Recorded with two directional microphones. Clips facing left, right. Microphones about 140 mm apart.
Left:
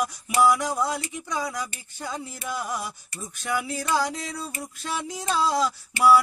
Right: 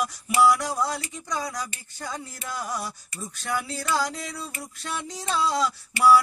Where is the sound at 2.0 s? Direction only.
5° left (ahead or behind).